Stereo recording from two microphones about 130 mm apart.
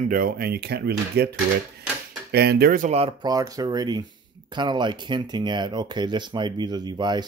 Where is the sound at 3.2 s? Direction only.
25° right (ahead or behind).